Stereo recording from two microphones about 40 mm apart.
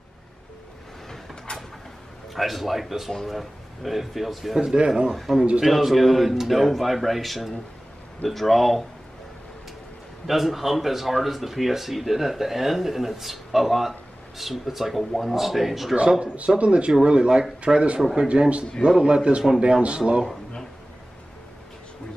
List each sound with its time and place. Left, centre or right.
2.3 s speech: centre
4.7 s a man's voice: right
5.1 s speech: centre
10.2 s speech: centre
16.0 s a man's voice: right